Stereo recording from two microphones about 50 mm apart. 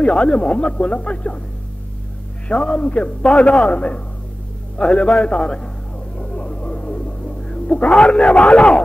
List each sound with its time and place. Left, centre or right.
0.0 s a man's voice: left
2.4 s a man's voice: centre
6.1 s music: left